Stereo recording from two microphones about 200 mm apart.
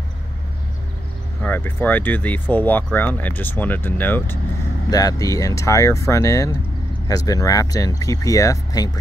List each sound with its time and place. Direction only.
1.4 s speech: 10° left (ahead or behind)